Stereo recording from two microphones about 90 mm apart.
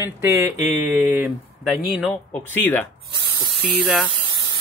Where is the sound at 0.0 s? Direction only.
30° right (ahead or behind).